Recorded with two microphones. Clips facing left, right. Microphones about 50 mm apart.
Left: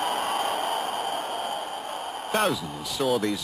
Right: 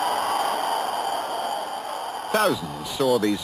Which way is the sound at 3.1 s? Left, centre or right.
Centre.